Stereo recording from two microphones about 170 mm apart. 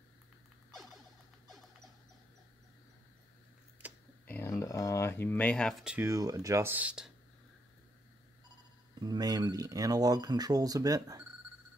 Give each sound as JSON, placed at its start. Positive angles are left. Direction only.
{"t": 3.8, "sound": "computer keyboard", "side_deg": -10}
{"t": 4.3, "sound": "a sound", "side_deg": 15}
{"t": 5.9, "sound": "speech", "side_deg": -20}
{"t": 9.0, "sound": "speech", "side_deg": -25}